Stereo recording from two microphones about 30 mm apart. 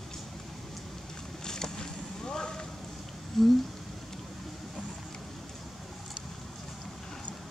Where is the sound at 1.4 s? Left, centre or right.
Left.